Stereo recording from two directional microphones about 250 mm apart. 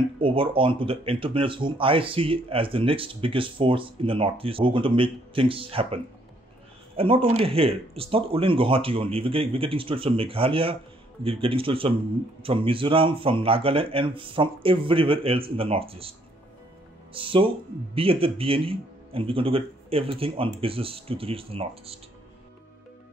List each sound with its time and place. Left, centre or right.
0.2 s speech: right
7.0 s speech: right